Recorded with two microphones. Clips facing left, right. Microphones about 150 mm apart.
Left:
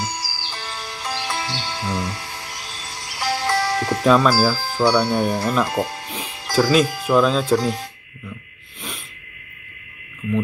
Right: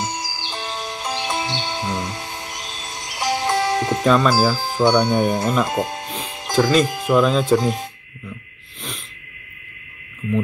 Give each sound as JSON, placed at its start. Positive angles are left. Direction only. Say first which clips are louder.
{"t": 0.0, "sound": "music", "louder": "right 2 dB", "side_deg": -20}
{"t": 4.0, "sound": "speech", "louder": "left 2 dB", "side_deg": 5}
{"t": 4.3, "sound": "speech", "louder": "right 1 dB", "side_deg": -20}
{"t": 6.2, "sound": "music", "louder": "right 3 dB", "side_deg": -20}
{"t": 6.9, "sound": "speech", "louder": "even", "side_deg": -20}
{"t": 7.2, "sound": "speech", "louder": "right 1 dB", "side_deg": 0}
{"t": 7.5, "sound": "speech", "louder": "right 1 dB", "side_deg": -20}